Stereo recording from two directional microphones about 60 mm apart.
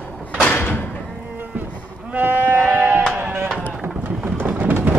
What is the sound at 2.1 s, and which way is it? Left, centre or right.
Sheep, right.